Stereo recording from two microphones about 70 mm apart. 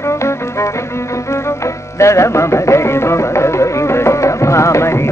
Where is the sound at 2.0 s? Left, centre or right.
Left.